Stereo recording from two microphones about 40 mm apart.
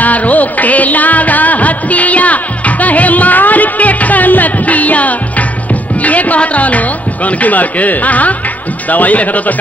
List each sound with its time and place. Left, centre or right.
0.0 s music: left
7.2 s speech: left